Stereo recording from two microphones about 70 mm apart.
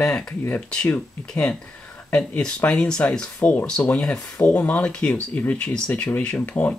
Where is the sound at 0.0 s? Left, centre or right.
Centre.